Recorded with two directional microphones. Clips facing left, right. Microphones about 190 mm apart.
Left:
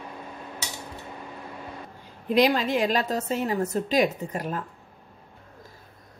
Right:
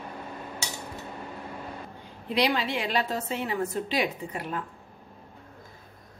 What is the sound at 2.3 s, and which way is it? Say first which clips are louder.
A woman's voice: left 5 dB; 45° left (ahead or behind).